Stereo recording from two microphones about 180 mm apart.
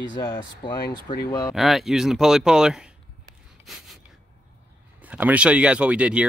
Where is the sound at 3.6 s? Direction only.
Centre (ahead or behind).